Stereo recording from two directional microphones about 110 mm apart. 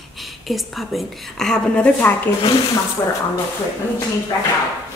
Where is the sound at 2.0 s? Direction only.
15° left (ahead or behind).